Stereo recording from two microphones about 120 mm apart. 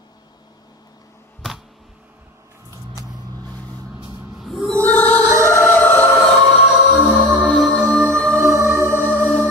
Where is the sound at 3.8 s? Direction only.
35° right (ahead or behind).